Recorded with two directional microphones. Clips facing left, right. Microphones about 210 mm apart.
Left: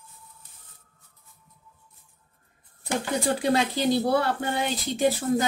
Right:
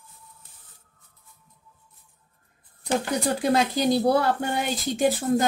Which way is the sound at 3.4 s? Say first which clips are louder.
Right 3 dB; 45° right (ahead or behind).